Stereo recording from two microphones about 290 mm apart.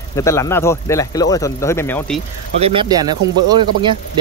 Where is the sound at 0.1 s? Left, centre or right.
Centre.